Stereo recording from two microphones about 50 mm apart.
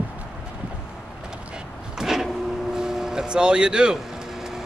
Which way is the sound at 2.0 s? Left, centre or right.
Centre.